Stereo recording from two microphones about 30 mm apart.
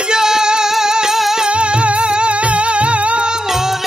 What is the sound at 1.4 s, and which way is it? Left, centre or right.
Music, right.